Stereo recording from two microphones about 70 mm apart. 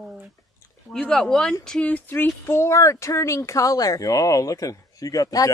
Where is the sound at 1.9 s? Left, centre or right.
Left.